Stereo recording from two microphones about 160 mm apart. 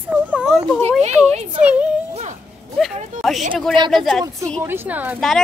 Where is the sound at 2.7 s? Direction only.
Centre (ahead or behind).